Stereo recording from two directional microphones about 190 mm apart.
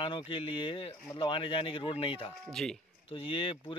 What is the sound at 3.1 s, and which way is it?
Speech, 30° left (ahead or behind).